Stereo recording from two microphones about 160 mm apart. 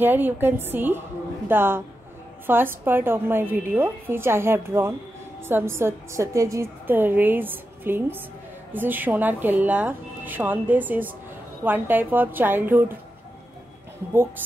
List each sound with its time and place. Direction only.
0.0 s a woman's voice: 10° right (ahead or behind)
14.1 s a woman's voice: 15° right (ahead or behind)